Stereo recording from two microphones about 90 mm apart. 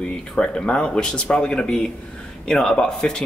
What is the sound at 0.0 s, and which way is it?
Speech, 10° left (ahead or behind).